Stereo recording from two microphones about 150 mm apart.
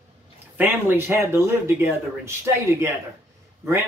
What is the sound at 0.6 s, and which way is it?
Speech, 15° right (ahead or behind).